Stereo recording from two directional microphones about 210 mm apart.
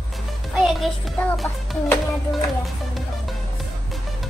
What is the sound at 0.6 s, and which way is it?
Music, centre (ahead or behind).